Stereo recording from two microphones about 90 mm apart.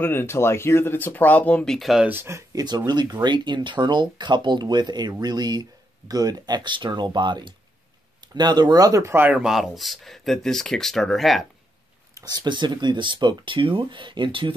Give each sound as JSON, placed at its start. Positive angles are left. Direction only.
{"t": 0.0, "sound": "speech", "side_deg": 25}
{"t": 1.8, "sound": "speech", "side_deg": -5}
{"t": 2.0, "sound": "speech", "side_deg": -25}
{"t": 2.5, "sound": "speech", "side_deg": -50}
{"t": 9.3, "sound": "speech", "side_deg": -5}
{"t": 12.2, "sound": "speech", "side_deg": -50}